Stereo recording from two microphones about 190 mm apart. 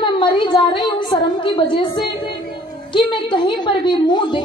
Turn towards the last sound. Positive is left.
turn(degrees=25)  # may be behind; listen again after turning